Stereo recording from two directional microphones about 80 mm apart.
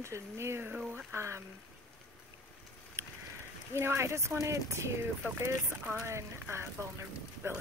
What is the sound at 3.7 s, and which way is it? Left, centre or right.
Speech, right.